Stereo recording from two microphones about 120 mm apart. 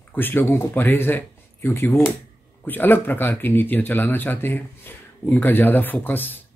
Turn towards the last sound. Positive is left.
turn(degrees=15)  # may be behind; listen again after turning